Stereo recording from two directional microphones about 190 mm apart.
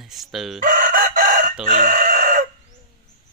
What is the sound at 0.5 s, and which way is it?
Chicken, 45° right (ahead or behind).